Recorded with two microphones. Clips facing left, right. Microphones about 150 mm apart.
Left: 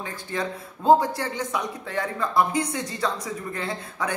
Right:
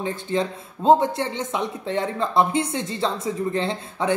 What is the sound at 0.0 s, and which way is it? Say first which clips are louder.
Speech: right 6 dB; 25° right (ahead or behind).